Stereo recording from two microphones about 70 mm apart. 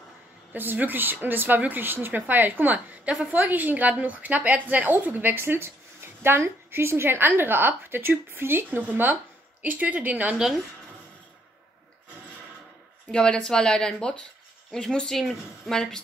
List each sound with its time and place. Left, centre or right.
0.5 s a woman's voice: right
10.3 s speech: centre
13.1 s speech: centre